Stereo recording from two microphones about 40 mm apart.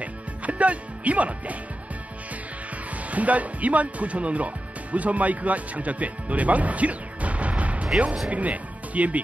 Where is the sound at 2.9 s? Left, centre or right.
Right.